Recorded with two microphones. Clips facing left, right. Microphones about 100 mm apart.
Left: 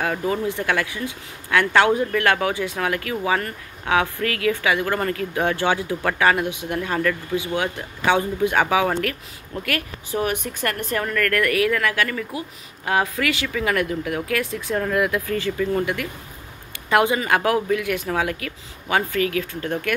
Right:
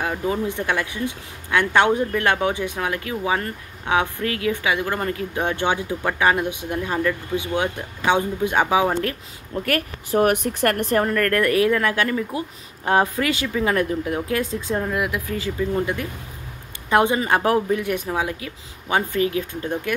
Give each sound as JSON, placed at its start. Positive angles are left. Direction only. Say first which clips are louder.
{"t": 0.0, "sound": "speech", "louder": "left 1 dB", "side_deg": -15}
{"t": 9.7, "sound": "a woman's voice", "louder": "right 4 dB", "side_deg": -45}
{"t": 14.8, "sound": "speech", "louder": "left 5 dB", "side_deg": -15}
{"t": 15.8, "sound": "speech", "louder": "even", "side_deg": -25}
{"t": 18.0, "sound": "speech", "louder": "left 1 dB", "side_deg": -15}